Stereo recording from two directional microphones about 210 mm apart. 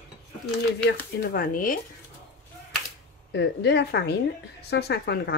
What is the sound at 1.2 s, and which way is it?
Speech, 40° left (ahead or behind).